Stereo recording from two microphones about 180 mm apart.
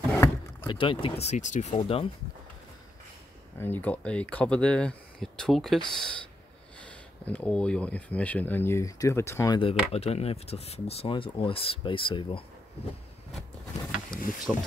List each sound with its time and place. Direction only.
0.1 s vehicle: 15° left (ahead or behind)
0.7 s speech: 30° left (ahead or behind)
3.5 s speech: 10° left (ahead or behind)
7.2 s speech: 5° left (ahead or behind)
9.6 s speech: 35° left (ahead or behind)
14.1 s speech: 25° left (ahead or behind)
14.5 s speech: 10° right (ahead or behind)